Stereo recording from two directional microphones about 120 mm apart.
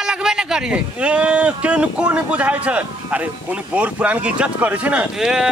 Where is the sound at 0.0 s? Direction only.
5° right (ahead or behind).